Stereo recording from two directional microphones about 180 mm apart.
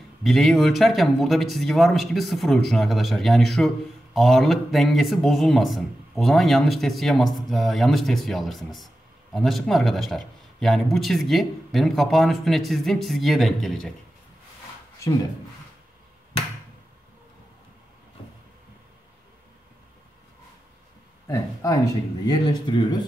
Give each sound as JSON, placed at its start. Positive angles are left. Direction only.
{"t": 0.2, "sound": "speech", "side_deg": 0}
{"t": 22.2, "sound": "speech", "side_deg": 25}